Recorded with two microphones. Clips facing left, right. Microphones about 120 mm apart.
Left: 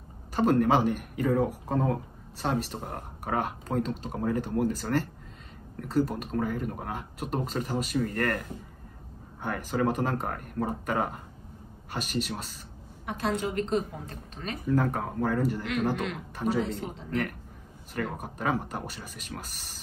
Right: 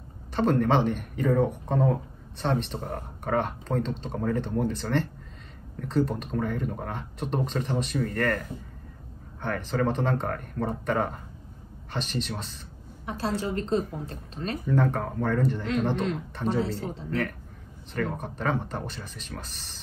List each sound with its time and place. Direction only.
0.4 s speech: 5° left (ahead or behind)
13.0 s a woman's voice: 30° right (ahead or behind)
14.7 s speech: 5° left (ahead or behind)